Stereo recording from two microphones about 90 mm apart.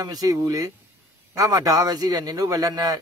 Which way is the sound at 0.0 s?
45° right (ahead or behind).